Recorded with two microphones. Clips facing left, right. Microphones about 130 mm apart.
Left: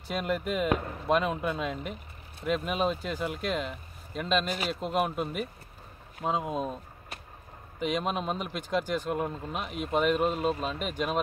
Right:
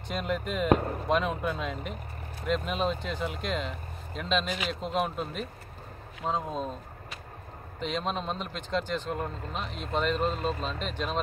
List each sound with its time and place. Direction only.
0.1 s speech: 5° left (ahead or behind)
0.7 s speech: 40° right (ahead or behind)
1.0 s speech: centre (ahead or behind)
7.8 s speech: 10° left (ahead or behind)